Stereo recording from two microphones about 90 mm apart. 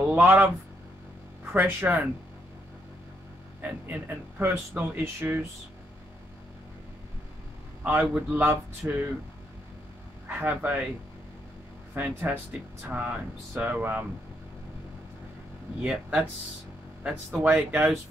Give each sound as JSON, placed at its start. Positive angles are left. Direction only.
{"t": 0.1, "sound": "speech", "side_deg": -20}
{"t": 3.6, "sound": "speech", "side_deg": -20}
{"t": 7.8, "sound": "a man's voice", "side_deg": -20}
{"t": 10.2, "sound": "speech", "side_deg": -20}
{"t": 11.9, "sound": "speech", "side_deg": -20}
{"t": 15.8, "sound": "speech", "side_deg": -15}
{"t": 17.4, "sound": "speech", "side_deg": -20}